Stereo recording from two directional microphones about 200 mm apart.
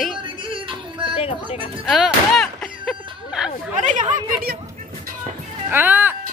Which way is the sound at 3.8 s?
40° right (ahead or behind).